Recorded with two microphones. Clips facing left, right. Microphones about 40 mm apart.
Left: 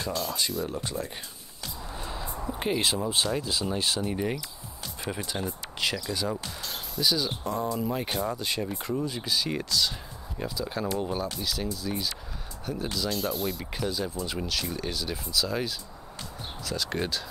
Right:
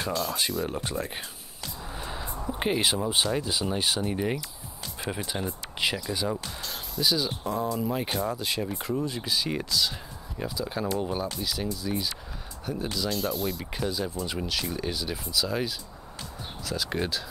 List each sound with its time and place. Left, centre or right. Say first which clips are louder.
0.1 s speech: right 2 dB; centre
0.7 s speech: right 2 dB; right
1.9 s a sound: even; centre
2.5 s speech: right 1 dB; centre